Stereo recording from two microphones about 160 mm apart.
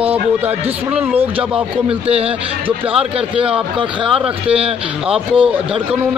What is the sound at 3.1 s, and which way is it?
Speech, 35° right (ahead or behind).